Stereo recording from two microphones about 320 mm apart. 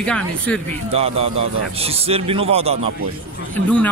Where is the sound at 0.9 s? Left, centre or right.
Centre.